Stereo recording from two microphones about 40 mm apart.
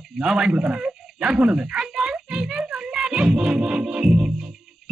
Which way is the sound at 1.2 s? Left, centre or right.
Centre.